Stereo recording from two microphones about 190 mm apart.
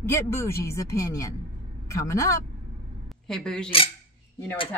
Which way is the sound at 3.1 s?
5° left (ahead or behind).